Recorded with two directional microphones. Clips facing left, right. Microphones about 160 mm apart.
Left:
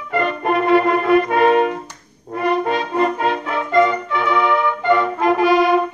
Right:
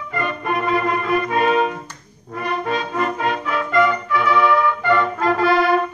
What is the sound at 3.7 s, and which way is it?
Brass instrument, 25° left (ahead or behind).